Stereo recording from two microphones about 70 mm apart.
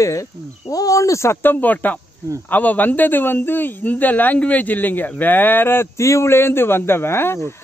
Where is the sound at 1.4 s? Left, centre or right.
Left.